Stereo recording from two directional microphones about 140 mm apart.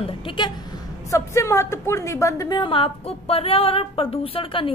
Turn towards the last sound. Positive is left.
turn(degrees=40)  # may be behind; listen again after turning